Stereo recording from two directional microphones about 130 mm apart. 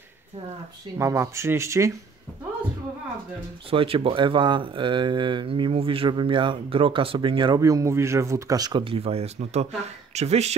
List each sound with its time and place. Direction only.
0.9 s speech: 20° right (ahead or behind)
3.7 s speech: 45° right (ahead or behind)
7.6 s speech: 25° right (ahead or behind); by 10.5 s 55° right (ahead or behind)